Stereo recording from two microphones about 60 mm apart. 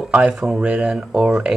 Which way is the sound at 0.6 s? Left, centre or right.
Right.